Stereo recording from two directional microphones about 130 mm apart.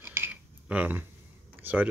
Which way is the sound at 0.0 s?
15° right (ahead or behind).